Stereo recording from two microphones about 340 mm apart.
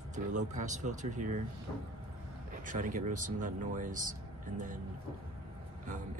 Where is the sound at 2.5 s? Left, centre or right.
Right.